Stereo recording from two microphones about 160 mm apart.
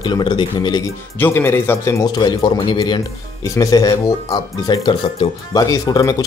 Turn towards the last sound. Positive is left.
turn(degrees=25)  # may be behind; listen again after turning